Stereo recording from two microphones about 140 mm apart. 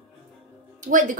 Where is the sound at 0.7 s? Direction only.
70° right (ahead or behind).